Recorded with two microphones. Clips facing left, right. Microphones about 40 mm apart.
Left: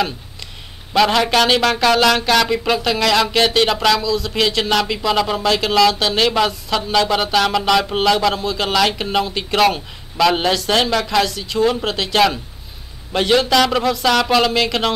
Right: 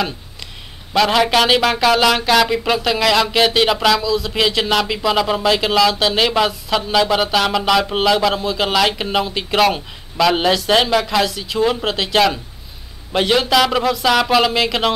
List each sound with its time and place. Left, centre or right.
0.9 s speech: centre